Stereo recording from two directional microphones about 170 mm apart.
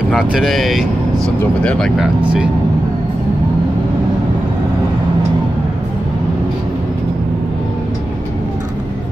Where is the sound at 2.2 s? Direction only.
5° right (ahead or behind).